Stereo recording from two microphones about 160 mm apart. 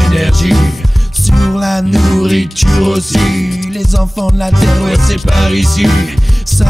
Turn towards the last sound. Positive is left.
turn(degrees=0)  # may be behind; listen again after turning